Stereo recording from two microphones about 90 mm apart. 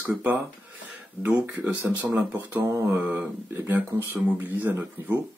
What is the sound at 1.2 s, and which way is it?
Speech, 20° right (ahead or behind).